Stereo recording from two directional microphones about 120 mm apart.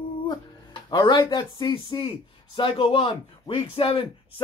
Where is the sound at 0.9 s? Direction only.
40° left (ahead or behind).